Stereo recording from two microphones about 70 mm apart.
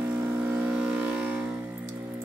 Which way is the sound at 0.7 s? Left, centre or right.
Centre.